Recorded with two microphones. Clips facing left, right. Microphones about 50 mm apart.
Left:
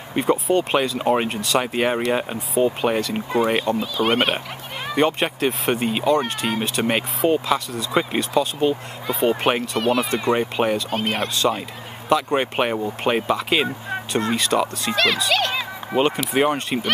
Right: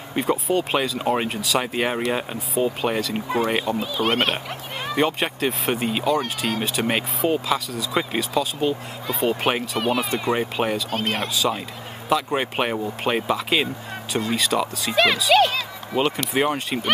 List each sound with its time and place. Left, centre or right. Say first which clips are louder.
0.1 s speech: left 3 dB; centre
15.5 s a sound: left 2 dB; centre
16.1 s speech: left 2 dB; centre